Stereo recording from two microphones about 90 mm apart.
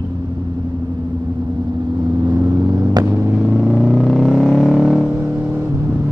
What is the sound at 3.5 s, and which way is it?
Vehicle, centre (ahead or behind).